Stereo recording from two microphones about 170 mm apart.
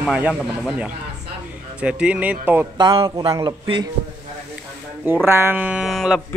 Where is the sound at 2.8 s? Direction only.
30° right (ahead or behind).